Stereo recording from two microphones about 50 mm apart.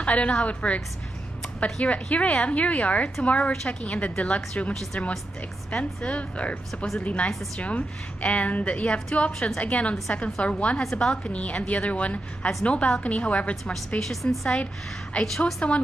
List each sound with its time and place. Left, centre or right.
0.0 s a woman's voice: left
10.8 s a woman's voice: centre
11.2 s a woman's voice: left
13.9 s a woman's voice: centre
15.6 s a woman's voice: left